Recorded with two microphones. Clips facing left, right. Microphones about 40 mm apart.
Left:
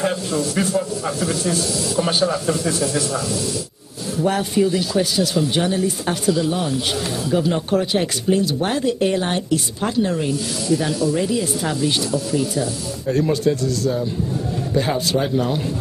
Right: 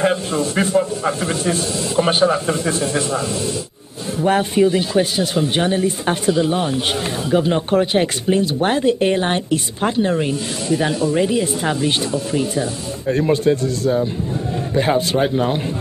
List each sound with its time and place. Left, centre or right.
0.0 s speech: right